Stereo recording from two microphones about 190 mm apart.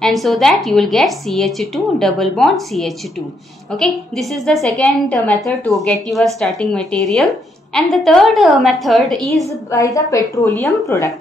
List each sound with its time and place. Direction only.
0.0 s a woman's voice: centre (ahead or behind)
9.7 s a woman's voice: 15° left (ahead or behind)